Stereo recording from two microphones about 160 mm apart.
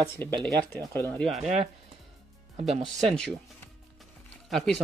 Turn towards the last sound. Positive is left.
turn(degrees=0)  # may be behind; listen again after turning